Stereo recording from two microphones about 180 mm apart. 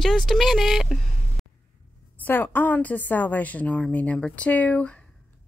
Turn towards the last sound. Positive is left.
turn(degrees=5)  # may be behind; listen again after turning